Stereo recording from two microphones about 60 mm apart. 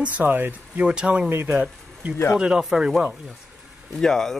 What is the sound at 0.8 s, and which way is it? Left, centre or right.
Speech, centre.